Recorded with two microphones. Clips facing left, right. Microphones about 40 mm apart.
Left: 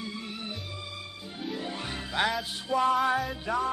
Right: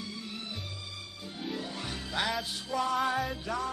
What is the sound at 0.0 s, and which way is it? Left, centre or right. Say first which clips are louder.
Music: left 3 dB; left.